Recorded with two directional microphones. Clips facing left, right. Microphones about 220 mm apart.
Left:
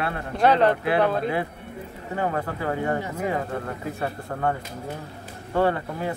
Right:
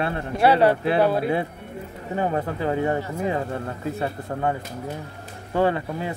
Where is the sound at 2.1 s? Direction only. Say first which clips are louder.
Right 2 dB; 20° right (ahead or behind).